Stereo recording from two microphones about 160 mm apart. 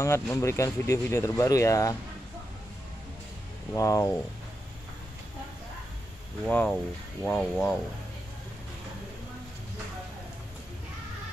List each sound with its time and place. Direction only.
0.0 s speech: 20° left (ahead or behind)
3.7 s speech: 20° left (ahead or behind)
6.4 s speech: 5° left (ahead or behind)